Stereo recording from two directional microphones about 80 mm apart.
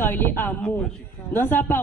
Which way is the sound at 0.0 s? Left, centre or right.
Left.